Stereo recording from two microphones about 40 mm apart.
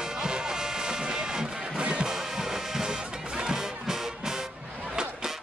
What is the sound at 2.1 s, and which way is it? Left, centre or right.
Music, centre.